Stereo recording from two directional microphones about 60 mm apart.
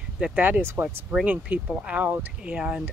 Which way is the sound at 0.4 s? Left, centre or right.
Right.